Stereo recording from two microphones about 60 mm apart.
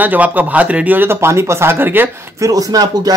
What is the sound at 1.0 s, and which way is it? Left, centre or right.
Speech, right.